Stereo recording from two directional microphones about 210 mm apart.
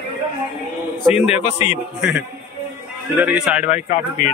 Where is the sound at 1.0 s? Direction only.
30° left (ahead or behind).